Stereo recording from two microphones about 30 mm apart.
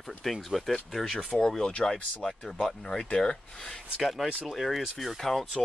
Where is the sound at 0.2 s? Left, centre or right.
Centre.